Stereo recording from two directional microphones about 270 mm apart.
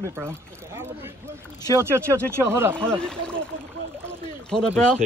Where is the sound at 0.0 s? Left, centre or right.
Centre.